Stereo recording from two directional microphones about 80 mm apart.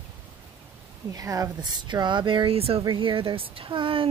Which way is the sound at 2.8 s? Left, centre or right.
Right.